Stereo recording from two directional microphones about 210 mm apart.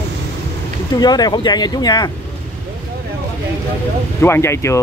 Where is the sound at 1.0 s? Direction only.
20° left (ahead or behind).